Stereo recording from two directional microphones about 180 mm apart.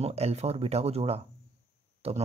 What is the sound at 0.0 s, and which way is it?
Speech, 35° right (ahead or behind).